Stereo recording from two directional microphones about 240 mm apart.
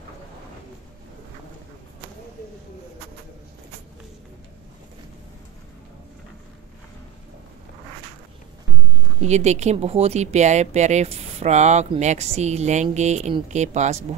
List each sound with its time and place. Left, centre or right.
9.2 s speech: right